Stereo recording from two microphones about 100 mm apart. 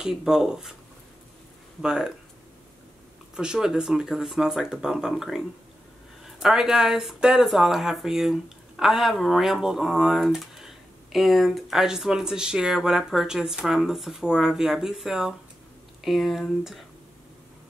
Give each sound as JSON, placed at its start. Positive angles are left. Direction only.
{"t": 0.0, "sound": "speech", "side_deg": -5}
{"t": 1.8, "sound": "speech", "side_deg": -5}
{"t": 3.3, "sound": "speech", "side_deg": -5}
{"t": 6.4, "sound": "speech", "side_deg": -5}